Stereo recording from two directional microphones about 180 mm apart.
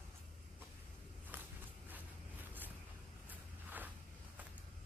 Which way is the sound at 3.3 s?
10° right (ahead or behind).